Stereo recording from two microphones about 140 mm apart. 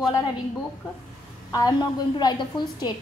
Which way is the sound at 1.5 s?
30° left (ahead or behind).